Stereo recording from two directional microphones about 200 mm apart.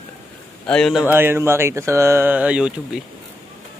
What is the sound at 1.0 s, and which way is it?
Speech, 10° right (ahead or behind).